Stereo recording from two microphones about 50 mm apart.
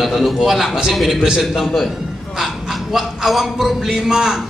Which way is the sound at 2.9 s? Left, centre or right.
Centre.